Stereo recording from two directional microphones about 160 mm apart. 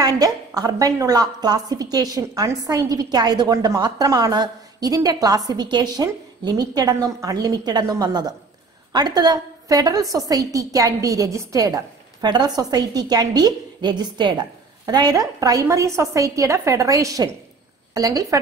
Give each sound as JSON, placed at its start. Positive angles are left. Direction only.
{"t": 0.0, "sound": "a woman's voice", "side_deg": -25}